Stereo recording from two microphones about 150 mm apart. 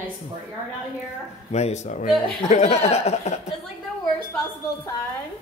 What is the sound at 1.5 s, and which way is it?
Speech, 45° left (ahead or behind).